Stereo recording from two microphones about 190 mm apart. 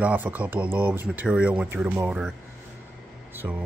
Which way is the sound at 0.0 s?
10° right (ahead or behind).